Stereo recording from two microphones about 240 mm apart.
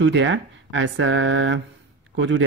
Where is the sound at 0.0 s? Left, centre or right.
Right.